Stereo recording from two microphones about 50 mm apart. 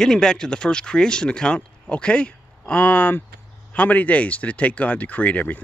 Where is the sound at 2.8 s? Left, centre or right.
Left.